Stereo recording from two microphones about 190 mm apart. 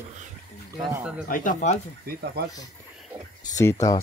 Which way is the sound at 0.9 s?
5° right (ahead or behind).